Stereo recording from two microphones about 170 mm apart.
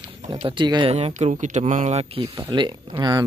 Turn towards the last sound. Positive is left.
turn(degrees=-25)  # may be behind; listen again after turning